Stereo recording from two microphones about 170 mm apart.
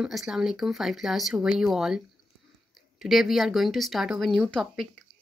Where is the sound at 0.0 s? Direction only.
5° right (ahead or behind).